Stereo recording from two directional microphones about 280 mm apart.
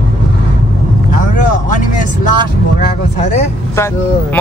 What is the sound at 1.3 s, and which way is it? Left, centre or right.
Speech, left.